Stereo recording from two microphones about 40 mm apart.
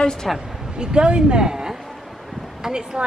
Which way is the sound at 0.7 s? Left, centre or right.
Right.